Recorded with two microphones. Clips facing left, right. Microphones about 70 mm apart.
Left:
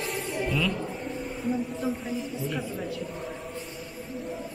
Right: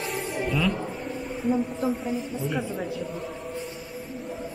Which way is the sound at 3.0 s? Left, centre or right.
Centre.